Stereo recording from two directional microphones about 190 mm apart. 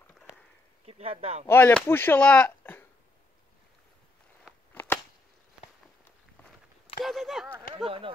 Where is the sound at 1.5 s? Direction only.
10° left (ahead or behind).